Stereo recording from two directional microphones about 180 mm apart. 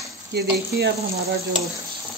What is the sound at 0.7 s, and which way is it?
Speech, 60° right (ahead or behind).